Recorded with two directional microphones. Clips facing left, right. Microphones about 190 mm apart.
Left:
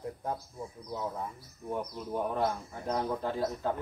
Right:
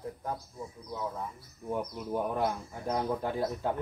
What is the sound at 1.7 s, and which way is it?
Speech, 10° right (ahead or behind).